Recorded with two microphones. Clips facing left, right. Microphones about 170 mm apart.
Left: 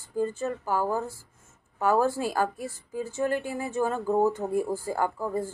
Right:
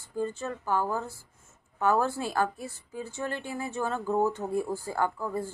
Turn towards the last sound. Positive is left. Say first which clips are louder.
# left 2 dB
turn(degrees=15)  # may be behind; listen again after turning